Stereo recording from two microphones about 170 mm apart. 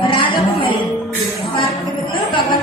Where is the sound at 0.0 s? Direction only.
30° left (ahead or behind).